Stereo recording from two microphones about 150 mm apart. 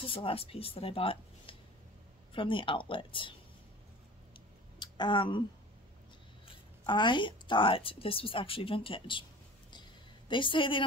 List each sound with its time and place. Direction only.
0.0 s a woman's voice: 35° left (ahead or behind)
4.7 s speech: 30° left (ahead or behind)
6.9 s a woman's voice: 30° left (ahead or behind)
9.7 s a sound: 30° left (ahead or behind)